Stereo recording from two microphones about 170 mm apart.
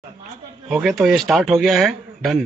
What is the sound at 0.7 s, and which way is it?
A man's voice, centre (ahead or behind).